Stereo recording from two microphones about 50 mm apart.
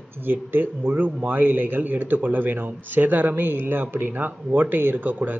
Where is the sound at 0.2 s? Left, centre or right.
Right.